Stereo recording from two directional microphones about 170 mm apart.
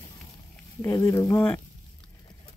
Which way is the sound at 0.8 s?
15° left (ahead or behind).